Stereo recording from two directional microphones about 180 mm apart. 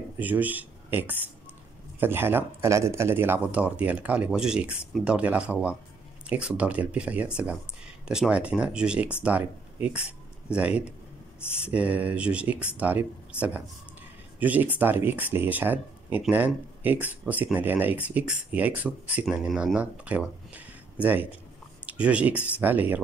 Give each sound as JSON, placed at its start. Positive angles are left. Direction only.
{"t": 0.2, "sound": "speech", "side_deg": -10}